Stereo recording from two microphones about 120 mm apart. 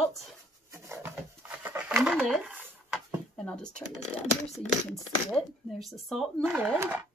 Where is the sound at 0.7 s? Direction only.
20° right (ahead or behind).